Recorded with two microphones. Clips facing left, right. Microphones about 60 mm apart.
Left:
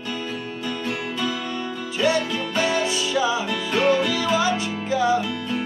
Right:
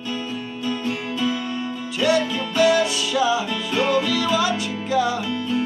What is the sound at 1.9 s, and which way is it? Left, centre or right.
Music, left.